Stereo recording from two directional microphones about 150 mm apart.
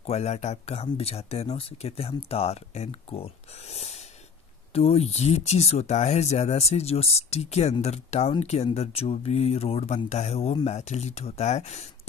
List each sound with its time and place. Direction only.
0.0 s speech: 45° left (ahead or behind)